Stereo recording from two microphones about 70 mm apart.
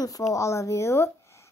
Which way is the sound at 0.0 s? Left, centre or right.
Left.